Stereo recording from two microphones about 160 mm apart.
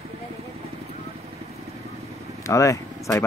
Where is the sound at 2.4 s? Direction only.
20° left (ahead or behind).